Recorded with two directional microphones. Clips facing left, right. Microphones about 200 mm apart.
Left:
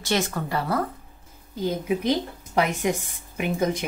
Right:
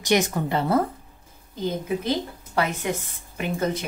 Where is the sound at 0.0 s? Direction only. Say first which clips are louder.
Right 4 dB; 15° right (ahead or behind).